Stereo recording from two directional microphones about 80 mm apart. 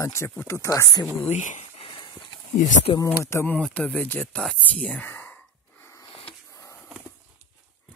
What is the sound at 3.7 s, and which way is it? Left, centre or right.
Speech, centre.